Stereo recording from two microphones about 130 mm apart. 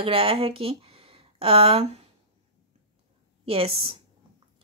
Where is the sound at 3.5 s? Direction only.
45° right (ahead or behind).